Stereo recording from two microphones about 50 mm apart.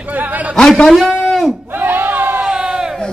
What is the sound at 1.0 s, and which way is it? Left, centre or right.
Speech, centre.